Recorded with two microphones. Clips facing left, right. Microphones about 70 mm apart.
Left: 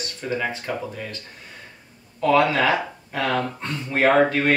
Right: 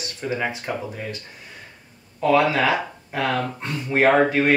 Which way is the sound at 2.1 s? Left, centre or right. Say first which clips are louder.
Even; centre.